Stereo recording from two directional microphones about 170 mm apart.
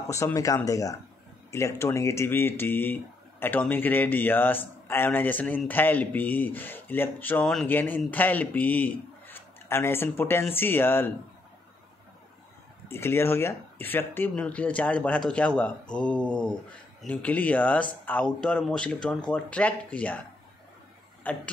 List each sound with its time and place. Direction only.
0.1 s speech: 15° left (ahead or behind)
12.8 s speech: 15° left (ahead or behind)
21.2 s speech: 10° left (ahead or behind)